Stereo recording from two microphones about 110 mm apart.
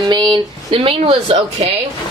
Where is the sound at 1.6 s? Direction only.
65° right (ahead or behind).